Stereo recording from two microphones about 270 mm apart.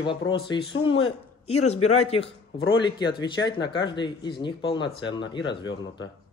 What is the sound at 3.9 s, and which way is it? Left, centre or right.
Speech, centre.